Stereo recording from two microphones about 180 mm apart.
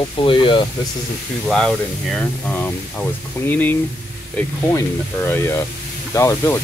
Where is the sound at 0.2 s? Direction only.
30° left (ahead or behind).